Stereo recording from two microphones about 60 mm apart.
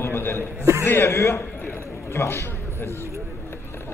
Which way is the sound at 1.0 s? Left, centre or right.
Left.